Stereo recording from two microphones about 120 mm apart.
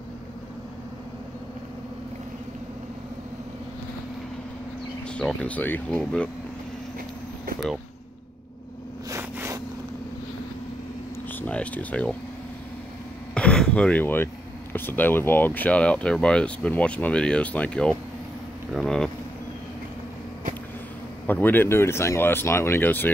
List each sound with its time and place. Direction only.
5.0 s speech: 10° left (ahead or behind)
9.1 s vehicle: 25° right (ahead or behind)
11.2 s a sound: 15° left (ahead or behind)
13.3 s speech: 10° left (ahead or behind)
21.3 s speech: 15° left (ahead or behind)